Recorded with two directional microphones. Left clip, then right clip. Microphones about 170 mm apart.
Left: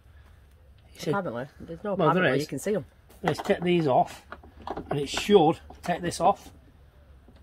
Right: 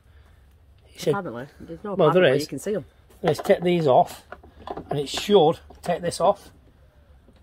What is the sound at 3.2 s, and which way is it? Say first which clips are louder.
Speech: right 6 dB; 40° right (ahead or behind).